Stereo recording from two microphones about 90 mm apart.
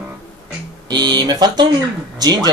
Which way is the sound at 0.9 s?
50° right (ahead or behind).